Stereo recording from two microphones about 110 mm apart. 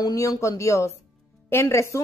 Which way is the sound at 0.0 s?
35° left (ahead or behind).